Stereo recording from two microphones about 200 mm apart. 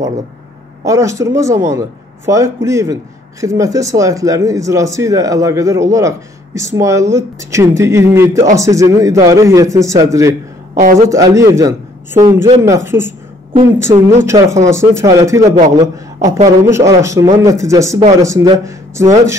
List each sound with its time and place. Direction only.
0.8 s a man's voice: 15° right (ahead or behind)
10.7 s a sound: 45° right (ahead or behind)
11.0 s a man's voice: 15° right (ahead or behind)